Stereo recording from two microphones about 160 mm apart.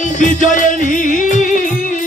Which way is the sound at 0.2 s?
50° left (ahead or behind).